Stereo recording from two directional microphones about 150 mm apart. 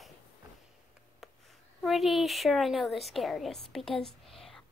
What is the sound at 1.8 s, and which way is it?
A woman's voice, centre (ahead or behind).